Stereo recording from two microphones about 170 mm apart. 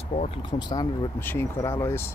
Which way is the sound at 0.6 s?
25° left (ahead or behind).